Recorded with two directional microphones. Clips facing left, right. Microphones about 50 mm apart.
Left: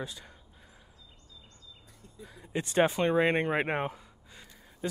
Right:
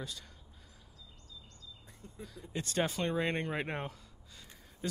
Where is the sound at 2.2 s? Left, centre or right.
Left.